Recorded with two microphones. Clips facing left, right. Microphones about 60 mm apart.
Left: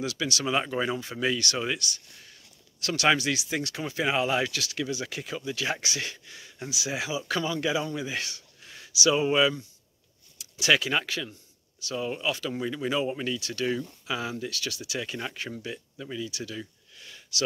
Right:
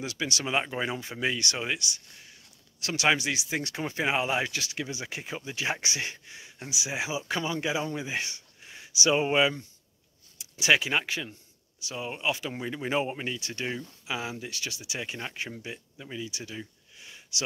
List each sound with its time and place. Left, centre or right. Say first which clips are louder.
0.0 s speech: left 3 dB; right